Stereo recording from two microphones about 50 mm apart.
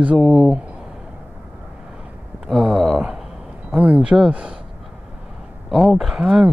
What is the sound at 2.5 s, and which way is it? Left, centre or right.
Speech, centre.